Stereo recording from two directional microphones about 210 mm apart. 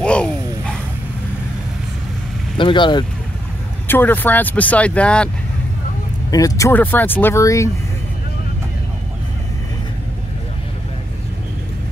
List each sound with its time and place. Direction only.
0.0 s a sound: 5° left (ahead or behind)
2.5 s speech: 20° left (ahead or behind)
3.8 s speech: 10° left (ahead or behind)
6.3 s speech: 15° left (ahead or behind)